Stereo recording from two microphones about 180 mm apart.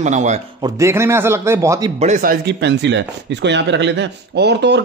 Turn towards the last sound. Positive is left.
turn(degrees=-70)  # may be behind; listen again after turning